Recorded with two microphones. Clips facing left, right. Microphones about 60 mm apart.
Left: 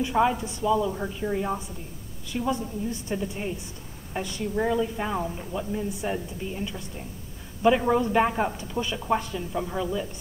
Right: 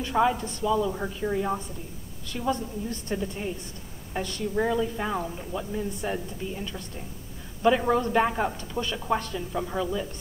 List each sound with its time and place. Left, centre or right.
0.1 s speech: centre
0.7 s speech: centre
2.5 s a woman's voice: centre
4.6 s speech: centre